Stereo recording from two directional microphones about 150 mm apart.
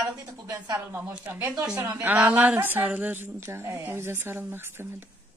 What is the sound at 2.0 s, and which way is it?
Speech, 10° right (ahead or behind).